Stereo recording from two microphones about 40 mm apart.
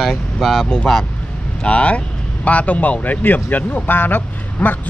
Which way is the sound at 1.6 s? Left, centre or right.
Left.